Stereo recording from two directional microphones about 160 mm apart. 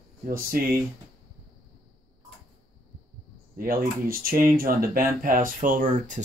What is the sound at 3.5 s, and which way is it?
Speech, 65° right (ahead or behind).